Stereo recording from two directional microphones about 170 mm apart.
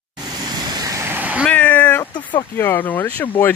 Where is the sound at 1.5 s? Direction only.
10° left (ahead or behind).